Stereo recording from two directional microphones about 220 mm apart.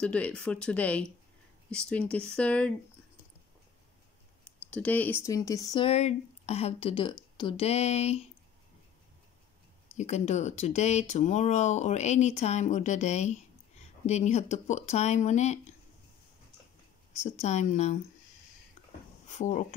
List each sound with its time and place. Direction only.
0.0 s speech: 5° left (ahead or behind)
4.6 s speech: 5° left (ahead or behind); by 8.3 s 30° left (ahead or behind)
9.9 s speech: 30° left (ahead or behind)
17.1 s speech: 30° left (ahead or behind)
19.2 s speech: 35° left (ahead or behind)